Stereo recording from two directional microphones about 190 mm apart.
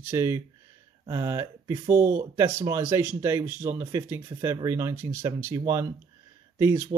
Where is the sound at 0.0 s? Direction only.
15° right (ahead or behind).